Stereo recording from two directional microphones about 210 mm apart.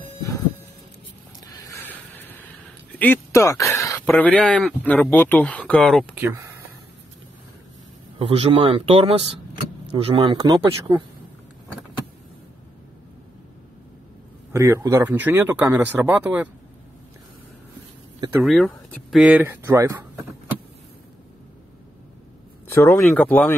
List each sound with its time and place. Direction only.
1.4 s a sound: 15° left (ahead or behind)
3.0 s speech: 10° left (ahead or behind)
6.1 s speech: 10° right (ahead or behind)
8.2 s speech: 25° right (ahead or behind)
14.5 s speech: 15° right (ahead or behind)
18.4 s speech: centre (ahead or behind)
22.8 s speech: 10° left (ahead or behind)